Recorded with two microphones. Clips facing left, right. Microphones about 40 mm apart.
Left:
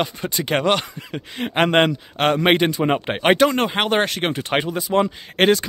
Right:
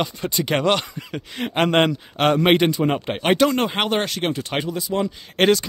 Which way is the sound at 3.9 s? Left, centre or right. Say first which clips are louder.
Left 2 dB; centre.